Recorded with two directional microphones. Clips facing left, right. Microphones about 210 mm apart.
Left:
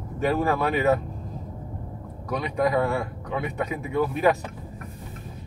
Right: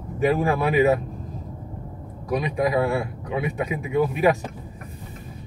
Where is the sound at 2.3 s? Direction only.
10° right (ahead or behind).